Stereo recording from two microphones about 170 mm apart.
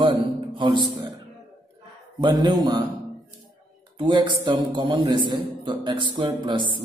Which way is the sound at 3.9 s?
25° right (ahead or behind).